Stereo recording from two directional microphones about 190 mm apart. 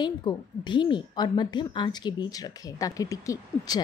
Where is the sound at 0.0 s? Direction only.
25° left (ahead or behind).